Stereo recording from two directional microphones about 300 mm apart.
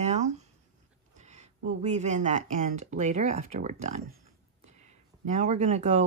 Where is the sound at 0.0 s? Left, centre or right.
Right.